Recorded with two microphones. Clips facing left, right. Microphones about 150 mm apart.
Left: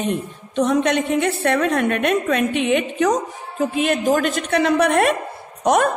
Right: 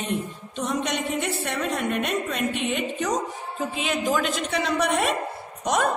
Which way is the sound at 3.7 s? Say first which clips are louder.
Left 6 dB; 55° left (ahead or behind).